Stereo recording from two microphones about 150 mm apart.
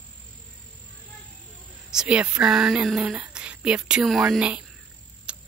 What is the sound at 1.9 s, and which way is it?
Speech, 5° right (ahead or behind).